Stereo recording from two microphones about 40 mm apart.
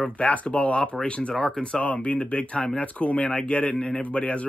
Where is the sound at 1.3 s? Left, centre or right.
Centre.